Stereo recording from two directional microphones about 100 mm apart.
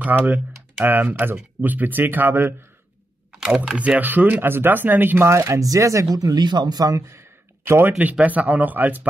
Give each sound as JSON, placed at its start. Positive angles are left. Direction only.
{"t": 0.0, "sound": "speech", "side_deg": -15}
{"t": 3.3, "sound": "speech", "side_deg": -10}
{"t": 8.0, "sound": "speech", "side_deg": -15}